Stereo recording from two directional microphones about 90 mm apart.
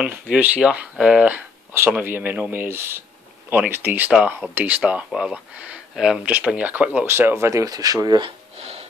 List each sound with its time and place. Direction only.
0.0 s speech: 15° right (ahead or behind); by 8.2 s 45° right (ahead or behind)